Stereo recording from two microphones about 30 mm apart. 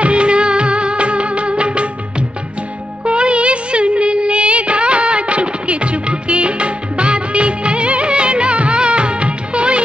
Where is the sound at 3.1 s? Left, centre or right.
Right.